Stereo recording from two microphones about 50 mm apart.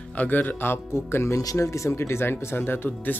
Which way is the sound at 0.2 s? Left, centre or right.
Left.